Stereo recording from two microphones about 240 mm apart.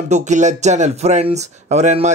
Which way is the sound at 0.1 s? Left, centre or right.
Right.